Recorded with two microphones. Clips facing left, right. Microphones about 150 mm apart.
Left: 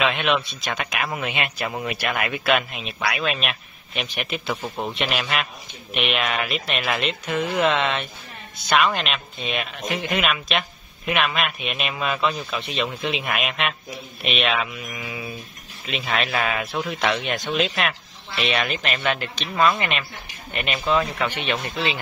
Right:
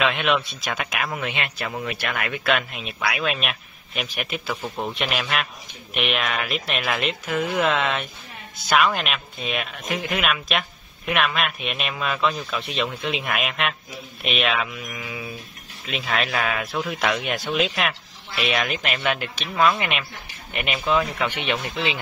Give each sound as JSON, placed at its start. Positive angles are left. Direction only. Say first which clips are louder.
{"t": 0.0, "sound": "speech", "louder": "even", "side_deg": 0}
{"t": 20.8, "sound": "speech", "louder": "even", "side_deg": 0}
{"t": 21.2, "sound": "speech", "louder": "even", "side_deg": -15}